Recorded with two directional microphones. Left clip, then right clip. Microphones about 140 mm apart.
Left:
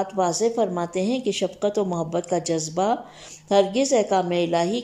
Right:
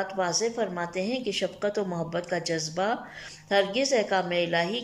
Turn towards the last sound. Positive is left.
turn(degrees=30)  # may be behind; listen again after turning